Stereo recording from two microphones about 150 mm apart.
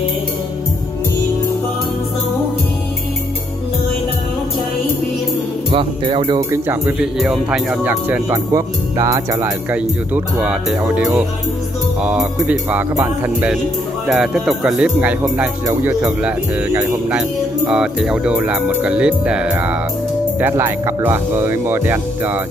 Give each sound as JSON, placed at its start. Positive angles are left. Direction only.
{"t": 5.7, "sound": "music", "side_deg": -35}
{"t": 6.5, "sound": "speech", "side_deg": -10}
{"t": 8.3, "sound": "speech", "side_deg": -20}
{"t": 17.6, "sound": "speech", "side_deg": -5}